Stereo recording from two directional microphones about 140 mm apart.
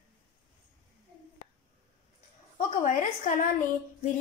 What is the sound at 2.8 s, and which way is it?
Speech, 60° left (ahead or behind).